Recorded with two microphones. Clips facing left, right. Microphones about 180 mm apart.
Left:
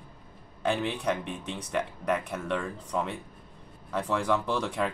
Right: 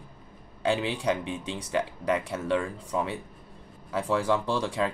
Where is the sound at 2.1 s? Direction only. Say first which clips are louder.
Right 3 dB; 10° right (ahead or behind).